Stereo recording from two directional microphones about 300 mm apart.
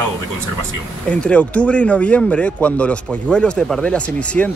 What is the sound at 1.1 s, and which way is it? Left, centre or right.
Speech, centre.